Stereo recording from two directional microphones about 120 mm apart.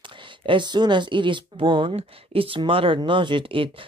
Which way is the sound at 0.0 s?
45° right (ahead or behind).